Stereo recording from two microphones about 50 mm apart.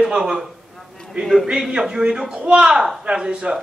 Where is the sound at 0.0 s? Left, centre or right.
Centre.